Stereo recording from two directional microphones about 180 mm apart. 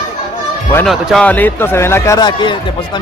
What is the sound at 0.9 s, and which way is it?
A man's voice, centre (ahead or behind).